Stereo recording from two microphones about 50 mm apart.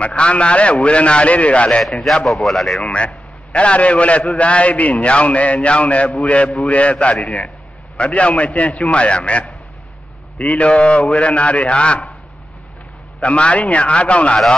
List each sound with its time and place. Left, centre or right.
0.0 s a man's voice: left
1.8 s speech: centre
2.8 s a man's voice: left
13.2 s a man's voice: left